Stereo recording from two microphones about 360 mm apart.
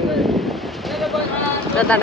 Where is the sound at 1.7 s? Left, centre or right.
Centre.